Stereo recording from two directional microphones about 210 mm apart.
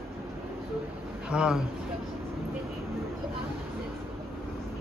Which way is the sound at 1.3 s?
5° right (ahead or behind).